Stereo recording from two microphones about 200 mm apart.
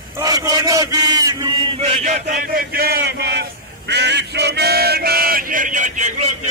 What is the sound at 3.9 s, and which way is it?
Male singing, 60° right (ahead or behind).